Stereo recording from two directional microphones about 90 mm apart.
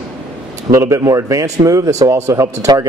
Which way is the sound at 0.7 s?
35° right (ahead or behind).